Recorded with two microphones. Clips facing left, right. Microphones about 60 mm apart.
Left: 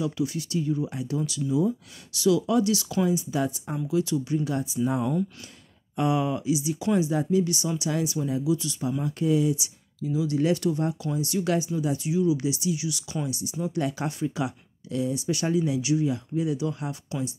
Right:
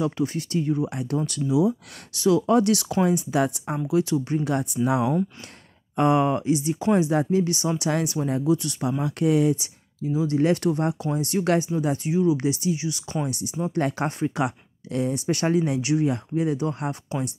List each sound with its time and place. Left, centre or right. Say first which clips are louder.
0.0 s speech: right 3 dB; right
1.5 s speech: right 4 dB; right
2.1 s speech: right 3 dB; right
4.0 s speech: right 2 dB; right
4.5 s speech: right 4 dB; right
4.8 s speech: right 4 dB; right
5.9 s speech: right 5 dB; right
7.9 s speech: even; right
9.0 s speech: right 3 dB; right
9.6 s speech: right 1 dB; right